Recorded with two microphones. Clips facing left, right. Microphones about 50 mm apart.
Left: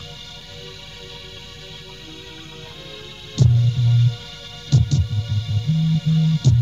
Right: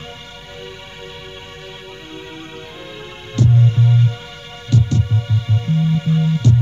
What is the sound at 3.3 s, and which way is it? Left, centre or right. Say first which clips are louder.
Music: right 5 dB; right.